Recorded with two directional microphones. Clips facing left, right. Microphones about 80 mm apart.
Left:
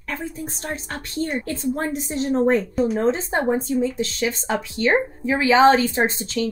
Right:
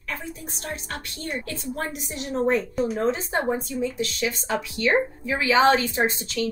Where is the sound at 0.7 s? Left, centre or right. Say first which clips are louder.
Even; left.